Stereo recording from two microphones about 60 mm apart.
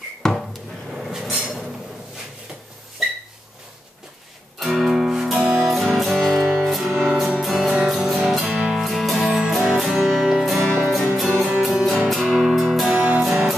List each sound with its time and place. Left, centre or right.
0.2 s music: centre
4.6 s music: centre
5.7 s music: centre
6.8 s music: centre
12.9 s music: right
13.2 s music: centre